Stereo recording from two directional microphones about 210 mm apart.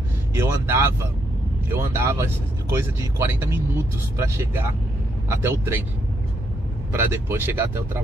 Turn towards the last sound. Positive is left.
turn(degrees=-10)  # may be behind; listen again after turning